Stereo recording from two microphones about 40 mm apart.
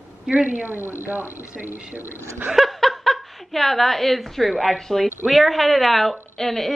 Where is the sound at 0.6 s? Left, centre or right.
Right.